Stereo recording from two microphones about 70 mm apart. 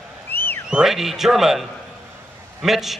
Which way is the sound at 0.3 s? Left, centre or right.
Left.